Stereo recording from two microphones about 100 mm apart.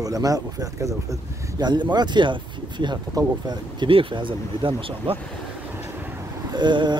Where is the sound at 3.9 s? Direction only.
60° right (ahead or behind).